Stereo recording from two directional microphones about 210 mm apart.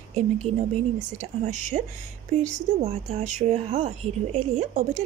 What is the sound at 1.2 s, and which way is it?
Speech, 35° right (ahead or behind).